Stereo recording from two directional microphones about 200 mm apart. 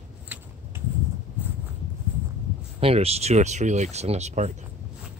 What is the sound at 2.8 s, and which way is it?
Speech, 30° right (ahead or behind).